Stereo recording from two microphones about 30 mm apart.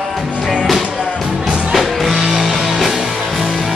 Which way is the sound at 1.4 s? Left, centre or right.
Right.